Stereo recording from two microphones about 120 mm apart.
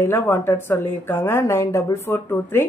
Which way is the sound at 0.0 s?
20° left (ahead or behind).